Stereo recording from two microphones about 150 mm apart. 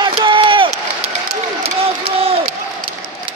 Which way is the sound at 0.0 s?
35° right (ahead or behind).